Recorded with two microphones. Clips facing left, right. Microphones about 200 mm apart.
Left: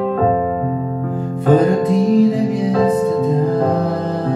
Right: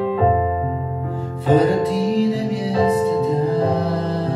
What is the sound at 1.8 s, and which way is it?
Music, 50° left (ahead or behind).